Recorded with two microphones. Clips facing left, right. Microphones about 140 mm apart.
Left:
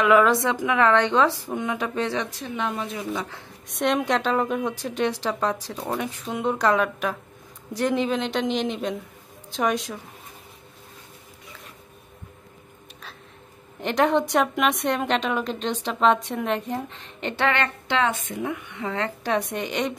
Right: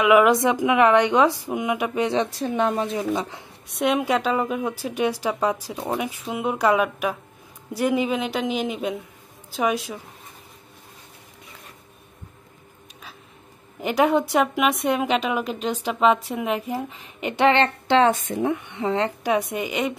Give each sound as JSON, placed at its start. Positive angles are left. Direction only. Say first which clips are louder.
{"t": 0.0, "sound": "a woman's voice", "louder": "right 2 dB", "side_deg": -10}
{"t": 2.4, "sound": "speech", "louder": "right 6 dB", "side_deg": -40}
{"t": 3.7, "sound": "a woman's voice", "louder": "right 1 dB", "side_deg": -5}
{"t": 13.7, "sound": "a woman's voice", "louder": "right 1 dB", "side_deg": -5}
{"t": 17.5, "sound": "a woman's voice", "louder": "right 8 dB", "side_deg": -30}